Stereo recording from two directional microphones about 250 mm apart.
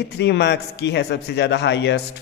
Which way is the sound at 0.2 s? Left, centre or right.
Left.